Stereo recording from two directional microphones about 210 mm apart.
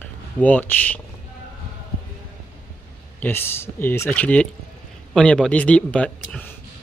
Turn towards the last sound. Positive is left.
turn(degrees=5)  # may be behind; listen again after turning